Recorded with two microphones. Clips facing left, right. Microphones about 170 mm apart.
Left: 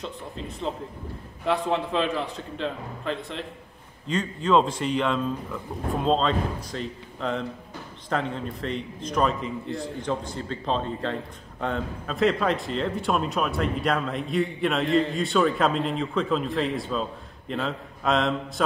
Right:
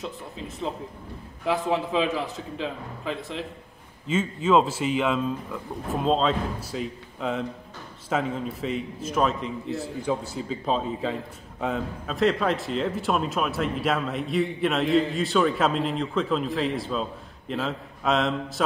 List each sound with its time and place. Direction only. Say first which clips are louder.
0.0 s a man's voice: even; centre (ahead or behind)